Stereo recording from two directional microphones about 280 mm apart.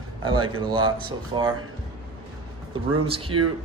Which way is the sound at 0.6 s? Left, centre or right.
Centre.